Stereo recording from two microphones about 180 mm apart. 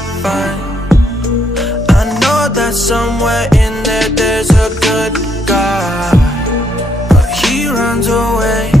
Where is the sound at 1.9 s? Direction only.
Centre (ahead or behind).